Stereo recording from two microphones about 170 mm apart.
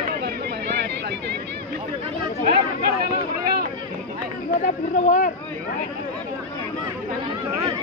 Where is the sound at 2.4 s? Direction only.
60° right (ahead or behind).